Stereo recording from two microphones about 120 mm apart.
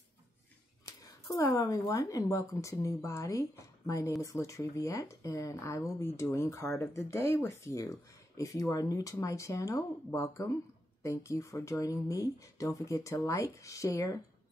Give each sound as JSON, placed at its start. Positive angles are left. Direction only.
{"t": 0.8, "sound": "speech", "side_deg": 25}